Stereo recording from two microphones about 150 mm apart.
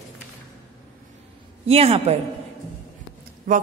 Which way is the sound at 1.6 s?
40° right (ahead or behind).